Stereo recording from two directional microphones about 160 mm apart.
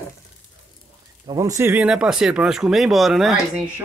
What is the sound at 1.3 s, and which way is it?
Speech, 20° right (ahead or behind).